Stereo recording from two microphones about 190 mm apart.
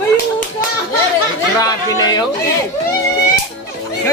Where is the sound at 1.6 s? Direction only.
20° left (ahead or behind).